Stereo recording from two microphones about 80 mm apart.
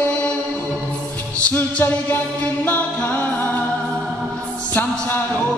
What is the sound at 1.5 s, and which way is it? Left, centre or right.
A capella, left.